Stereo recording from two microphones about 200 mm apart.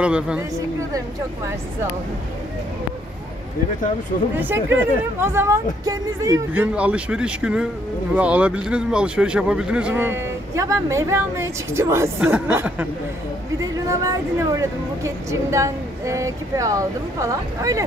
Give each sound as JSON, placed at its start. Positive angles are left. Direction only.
{"t": 0.0, "sound": "a woman's voice", "side_deg": -5}
{"t": 4.4, "sound": "speech", "side_deg": -10}
{"t": 13.8, "sound": "speech", "side_deg": -15}